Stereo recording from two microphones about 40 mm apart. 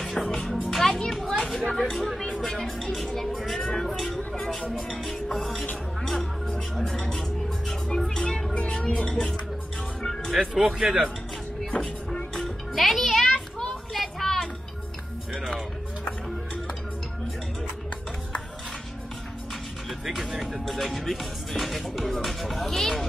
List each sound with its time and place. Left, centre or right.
0.0 s music: centre
1.1 s speech: centre
4.3 s music: centre
4.7 s speech: centre
7.1 s music: centre
7.9 s speech: left
8.3 s speech: centre
8.8 s speech: left
10.4 s speech: centre
11.7 s train: left
12.4 s music: centre
19.9 s music: centre
20.6 s speech: centre
22.7 s speech: centre